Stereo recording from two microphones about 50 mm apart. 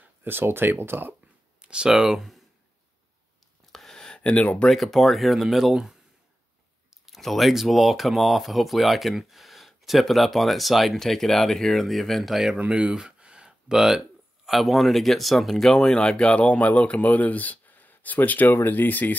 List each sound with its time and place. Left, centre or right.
0.0 s speech: right
1.6 s a sound: centre
2.0 s speech: centre
3.7 s a sound: centre
4.2 s speech: left
4.6 s speech: centre
7.2 s speech: centre
12.6 s speech: right; by 19.1 s left